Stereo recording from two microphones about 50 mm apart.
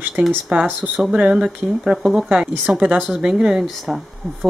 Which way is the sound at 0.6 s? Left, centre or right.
Right.